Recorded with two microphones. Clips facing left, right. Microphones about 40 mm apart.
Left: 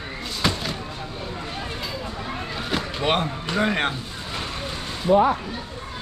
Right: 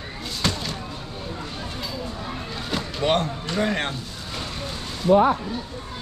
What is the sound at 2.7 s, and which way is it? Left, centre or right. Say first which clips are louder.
Speech: right 1 dB; centre.